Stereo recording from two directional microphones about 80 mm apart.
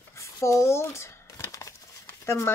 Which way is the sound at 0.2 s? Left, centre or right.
Left.